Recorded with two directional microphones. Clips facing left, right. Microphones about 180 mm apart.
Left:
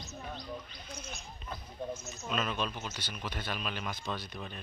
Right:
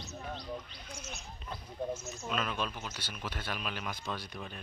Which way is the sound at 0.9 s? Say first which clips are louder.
Even; 5° right (ahead or behind).